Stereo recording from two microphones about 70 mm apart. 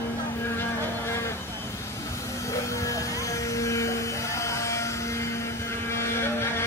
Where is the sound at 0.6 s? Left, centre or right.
Left.